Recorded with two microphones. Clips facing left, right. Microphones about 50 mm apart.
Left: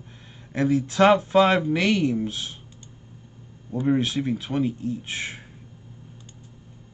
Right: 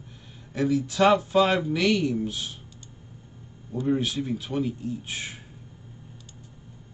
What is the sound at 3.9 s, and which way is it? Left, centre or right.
Speech, left.